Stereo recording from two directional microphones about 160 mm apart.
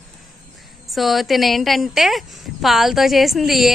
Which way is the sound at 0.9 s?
Centre (ahead or behind).